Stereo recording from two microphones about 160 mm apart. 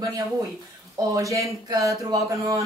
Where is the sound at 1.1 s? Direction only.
20° right (ahead or behind).